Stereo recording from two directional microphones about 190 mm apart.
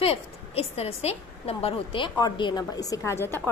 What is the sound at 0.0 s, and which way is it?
A woman's voice, 30° left (ahead or behind).